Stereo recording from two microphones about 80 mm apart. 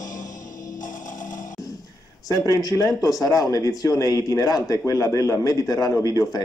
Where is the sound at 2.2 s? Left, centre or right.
Left.